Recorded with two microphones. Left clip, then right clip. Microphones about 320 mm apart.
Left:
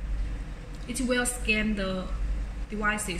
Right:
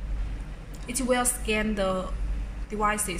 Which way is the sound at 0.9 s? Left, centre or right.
Centre.